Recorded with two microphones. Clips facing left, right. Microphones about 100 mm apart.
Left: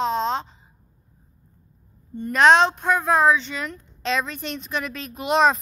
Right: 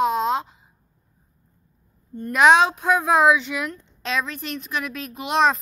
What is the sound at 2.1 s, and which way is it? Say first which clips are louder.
A woman's voice: even; 5° right (ahead or behind).